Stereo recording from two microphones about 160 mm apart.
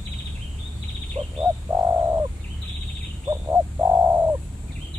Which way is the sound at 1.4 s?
25° right (ahead or behind).